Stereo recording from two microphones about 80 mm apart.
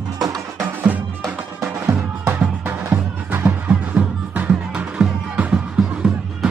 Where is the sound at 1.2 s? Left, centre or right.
Right.